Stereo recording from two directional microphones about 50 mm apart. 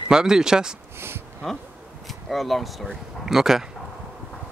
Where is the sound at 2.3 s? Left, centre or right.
Centre.